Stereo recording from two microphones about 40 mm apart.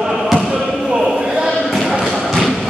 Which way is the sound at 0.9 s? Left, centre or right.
Centre.